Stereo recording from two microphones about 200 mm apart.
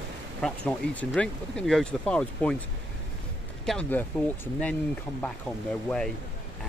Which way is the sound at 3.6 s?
5° left (ahead or behind).